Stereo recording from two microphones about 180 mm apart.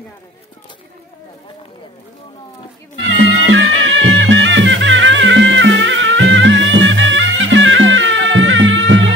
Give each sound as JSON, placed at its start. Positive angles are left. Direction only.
{"t": 3.4, "sound": "music", "side_deg": -90}